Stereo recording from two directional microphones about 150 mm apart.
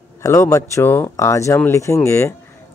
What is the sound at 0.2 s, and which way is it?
Speech, 20° left (ahead or behind).